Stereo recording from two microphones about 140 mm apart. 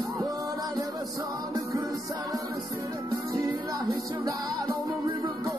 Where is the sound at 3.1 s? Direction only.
25° right (ahead or behind).